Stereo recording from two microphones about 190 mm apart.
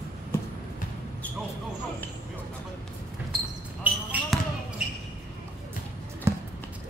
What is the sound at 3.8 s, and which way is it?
Basketball bounce, 5° right (ahead or behind).